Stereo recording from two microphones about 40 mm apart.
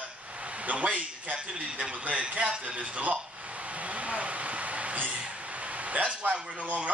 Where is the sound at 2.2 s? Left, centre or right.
Right.